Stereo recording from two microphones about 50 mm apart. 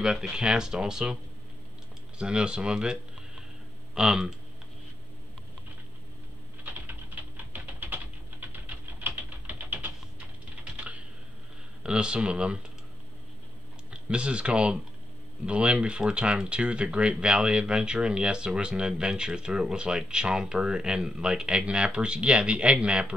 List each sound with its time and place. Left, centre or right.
0.0 s speech: centre
2.1 s speech: centre
6.6 s typing: right
8.6 s typing: right
10.8 s computer keyboard: right
11.8 s speech: centre
14.0 s speech: right